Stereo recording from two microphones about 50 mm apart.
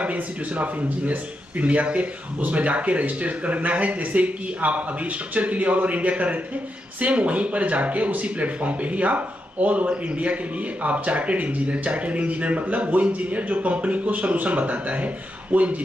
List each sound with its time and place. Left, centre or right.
0.0 s speech: right